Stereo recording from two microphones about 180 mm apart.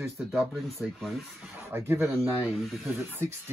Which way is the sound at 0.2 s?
5° right (ahead or behind).